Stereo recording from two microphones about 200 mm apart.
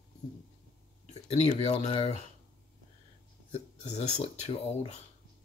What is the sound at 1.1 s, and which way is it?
Speech, 30° left (ahead or behind).